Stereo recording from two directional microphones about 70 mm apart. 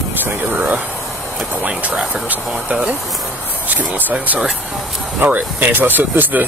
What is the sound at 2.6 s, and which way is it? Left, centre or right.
Speech, centre.